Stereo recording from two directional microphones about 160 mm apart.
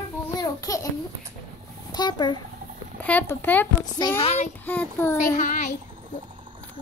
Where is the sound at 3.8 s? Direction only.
25° left (ahead or behind).